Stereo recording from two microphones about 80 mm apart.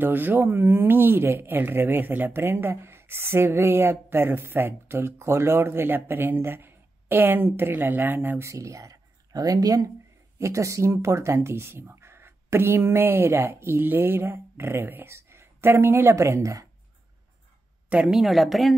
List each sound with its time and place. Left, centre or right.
0.0 s speech: right
8.5 s speech: right
17.8 s a woman's voice: centre